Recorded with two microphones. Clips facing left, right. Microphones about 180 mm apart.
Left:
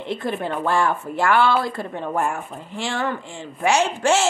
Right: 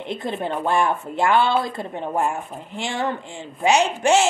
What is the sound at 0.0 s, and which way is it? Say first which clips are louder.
Speech: left 1 dB; 20° right (ahead or behind).